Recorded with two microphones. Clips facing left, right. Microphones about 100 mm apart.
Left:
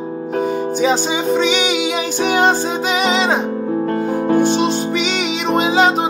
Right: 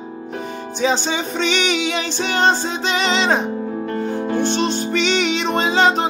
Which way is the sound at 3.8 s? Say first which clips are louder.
Left 5 dB; 45° left (ahead or behind).